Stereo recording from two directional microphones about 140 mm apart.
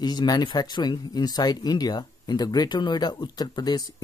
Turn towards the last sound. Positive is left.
turn(degrees=30)  # may be behind; listen again after turning